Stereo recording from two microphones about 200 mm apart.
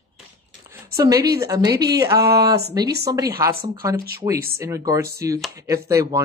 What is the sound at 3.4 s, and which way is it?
Speech, 20° right (ahead or behind).